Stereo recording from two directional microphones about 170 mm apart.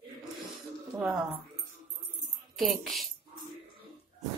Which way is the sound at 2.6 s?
Centre (ahead or behind).